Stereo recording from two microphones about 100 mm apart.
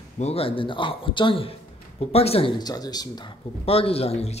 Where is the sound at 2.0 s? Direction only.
85° left.